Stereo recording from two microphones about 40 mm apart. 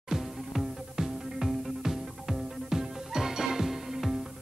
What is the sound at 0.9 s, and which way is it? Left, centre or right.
Music, centre.